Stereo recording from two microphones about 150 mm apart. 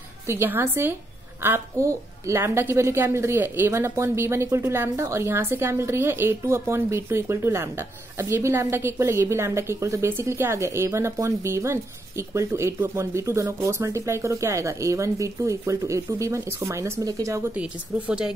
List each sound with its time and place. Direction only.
0.3 s a woman's voice: 15° right (ahead or behind)
17.6 s a woman's voice: 5° right (ahead or behind)